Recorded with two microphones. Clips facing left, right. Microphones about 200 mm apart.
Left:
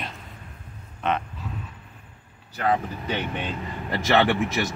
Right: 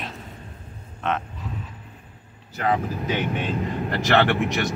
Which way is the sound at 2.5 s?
5° right (ahead or behind).